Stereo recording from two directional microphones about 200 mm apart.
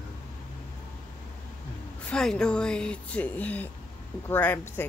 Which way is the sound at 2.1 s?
5° left (ahead or behind).